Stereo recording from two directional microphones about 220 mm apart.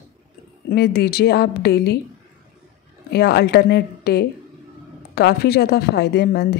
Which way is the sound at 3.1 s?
45° left (ahead or behind).